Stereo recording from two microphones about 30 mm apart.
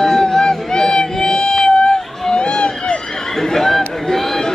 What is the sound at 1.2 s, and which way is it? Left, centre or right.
Music, left.